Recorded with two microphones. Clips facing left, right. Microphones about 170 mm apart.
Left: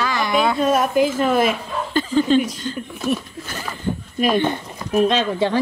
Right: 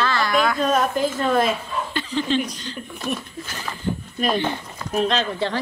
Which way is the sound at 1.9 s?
45° left (ahead or behind).